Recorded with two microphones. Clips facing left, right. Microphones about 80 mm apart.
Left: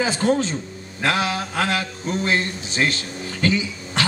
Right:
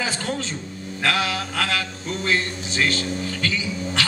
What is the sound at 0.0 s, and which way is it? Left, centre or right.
A man's voice, left.